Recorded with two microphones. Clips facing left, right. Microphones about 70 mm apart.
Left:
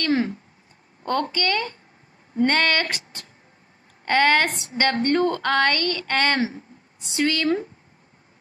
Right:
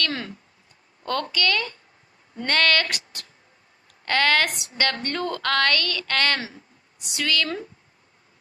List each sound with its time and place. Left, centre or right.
1.0 s a woman's voice: left